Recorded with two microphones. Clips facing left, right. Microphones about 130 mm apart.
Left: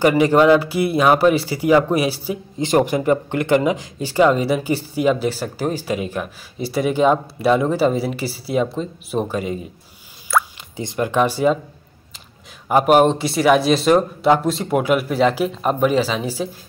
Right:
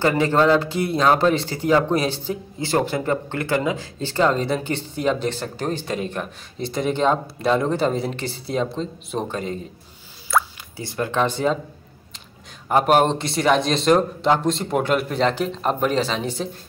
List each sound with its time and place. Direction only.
0.0 s speech: 15° left (ahead or behind)
10.8 s speech: 20° left (ahead or behind)
12.6 s speech: 5° left (ahead or behind)